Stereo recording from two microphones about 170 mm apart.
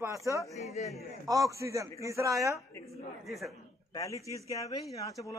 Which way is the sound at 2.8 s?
Centre (ahead or behind).